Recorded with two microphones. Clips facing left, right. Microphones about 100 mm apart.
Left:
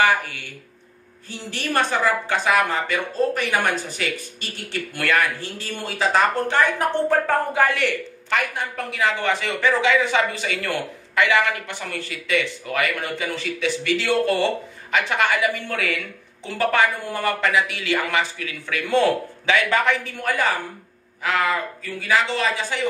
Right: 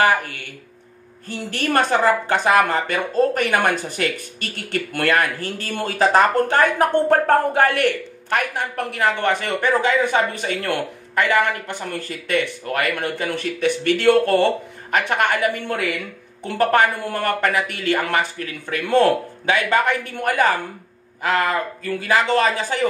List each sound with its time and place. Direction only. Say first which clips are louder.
1.5 s speech: right 4 dB; 45° right (ahead or behind)
21.2 s speech: right 2 dB; 45° right (ahead or behind)